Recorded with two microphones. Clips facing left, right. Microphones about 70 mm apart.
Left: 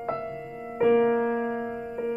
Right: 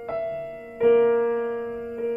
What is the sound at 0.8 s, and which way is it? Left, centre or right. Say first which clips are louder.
Music: right 3 dB; centre.